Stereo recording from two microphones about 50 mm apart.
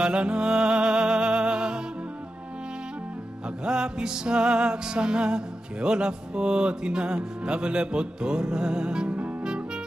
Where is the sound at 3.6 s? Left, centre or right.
Centre.